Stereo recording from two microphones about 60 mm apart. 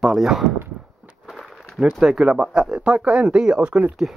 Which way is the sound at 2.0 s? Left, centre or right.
Centre.